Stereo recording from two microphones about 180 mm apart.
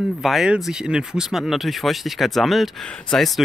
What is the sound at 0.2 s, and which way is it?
Speech, centre (ahead or behind).